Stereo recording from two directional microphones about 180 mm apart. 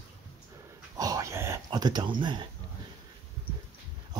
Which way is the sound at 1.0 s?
20° right (ahead or behind).